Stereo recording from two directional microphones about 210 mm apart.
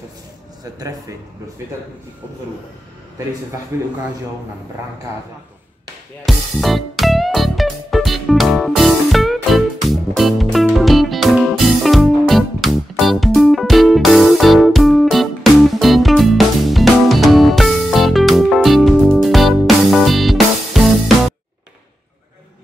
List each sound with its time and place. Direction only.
0.7 s a man's voice: 15° right (ahead or behind)
3.7 s a man's voice: 15° right (ahead or behind)
6.2 s music: centre (ahead or behind)